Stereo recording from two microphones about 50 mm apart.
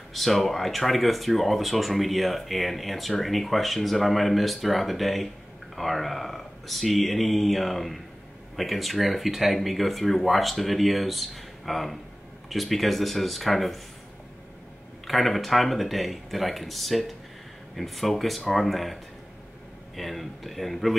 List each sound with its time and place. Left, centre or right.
0.1 s speech: centre
15.0 s speech: centre
20.0 s speech: centre